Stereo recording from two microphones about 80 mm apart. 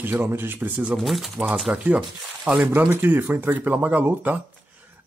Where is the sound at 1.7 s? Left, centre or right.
Centre.